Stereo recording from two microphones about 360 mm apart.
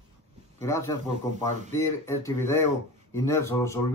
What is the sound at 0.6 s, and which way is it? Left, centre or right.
A man's voice, centre.